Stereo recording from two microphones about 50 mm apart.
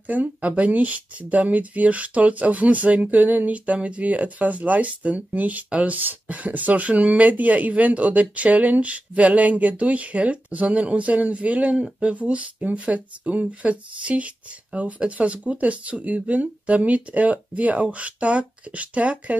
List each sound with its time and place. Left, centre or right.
0.0 s speech: right